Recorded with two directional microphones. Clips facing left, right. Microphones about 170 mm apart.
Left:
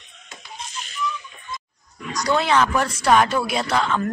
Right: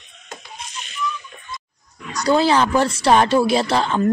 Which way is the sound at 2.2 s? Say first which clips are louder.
Right 3 dB; 30° right (ahead or behind).